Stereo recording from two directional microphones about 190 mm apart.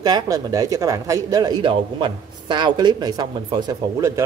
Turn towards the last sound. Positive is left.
turn(degrees=-20)  # may be behind; listen again after turning